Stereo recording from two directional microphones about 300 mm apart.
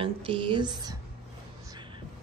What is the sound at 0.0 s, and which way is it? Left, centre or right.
Speech, centre.